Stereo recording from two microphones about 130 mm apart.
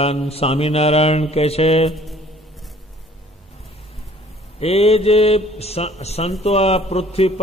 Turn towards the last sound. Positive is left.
turn(degrees=50)  # may be behind; listen again after turning